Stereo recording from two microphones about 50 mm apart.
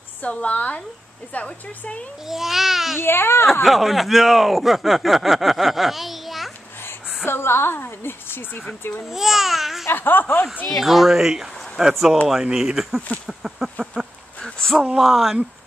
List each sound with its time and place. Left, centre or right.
0.2 s a woman's voice: left
2.2 s speech: centre
3.0 s speech: left
3.6 s speech: centre
7.2 s a woman's voice: left
9.1 s speech: centre
9.8 s speech: left
10.8 s speech: centre
14.4 s a sound: centre
15.0 s speech: centre